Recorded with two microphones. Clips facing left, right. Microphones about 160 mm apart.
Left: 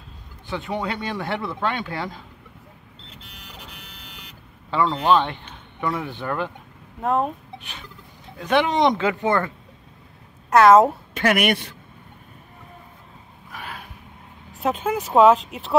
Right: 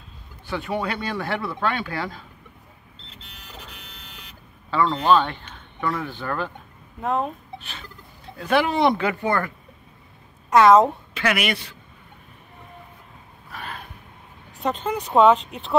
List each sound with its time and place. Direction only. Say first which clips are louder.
0.5 s speech: right 1 dB; 20° left (ahead or behind)
3.2 s car alarm: right 1 dB; 10° left (ahead or behind)
4.6 s speech: even; 20° left (ahead or behind)
7.0 s speech: left 2 dB; centre (ahead or behind)
8.4 s speech: left 1 dB; 5° right (ahead or behind)
8.7 s speech: left 1 dB; 20° left (ahead or behind)
10.5 s speech: left 1 dB; centre (ahead or behind)
11.1 s speech: left 4 dB; 50° left (ahead or behind)
13.5 s a sound: right 1 dB; 10° left (ahead or behind)
14.6 s speech: left 2 dB; 5° left (ahead or behind)